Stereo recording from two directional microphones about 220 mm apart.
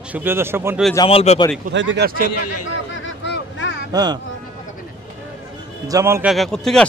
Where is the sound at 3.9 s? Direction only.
15° right (ahead or behind).